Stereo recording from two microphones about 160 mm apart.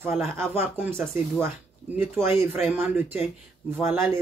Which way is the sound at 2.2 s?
15° right (ahead or behind).